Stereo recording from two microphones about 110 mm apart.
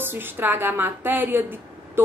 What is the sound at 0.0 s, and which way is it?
Speech, 20° right (ahead or behind).